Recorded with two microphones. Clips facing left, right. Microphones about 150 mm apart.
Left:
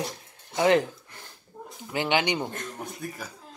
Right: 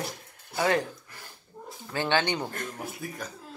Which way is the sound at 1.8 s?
15° left (ahead or behind).